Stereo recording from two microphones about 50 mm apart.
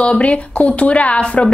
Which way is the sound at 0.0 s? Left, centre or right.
Left.